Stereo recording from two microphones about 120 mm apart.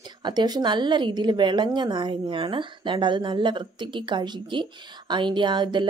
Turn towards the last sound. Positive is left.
turn(degrees=-40)  # may be behind; listen again after turning